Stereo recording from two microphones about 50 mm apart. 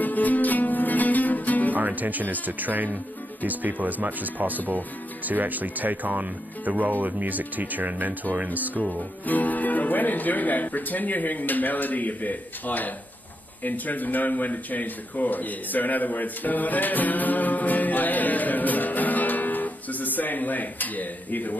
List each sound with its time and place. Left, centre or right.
0.0 s music: left
1.8 s speech: right
9.2 s speech: left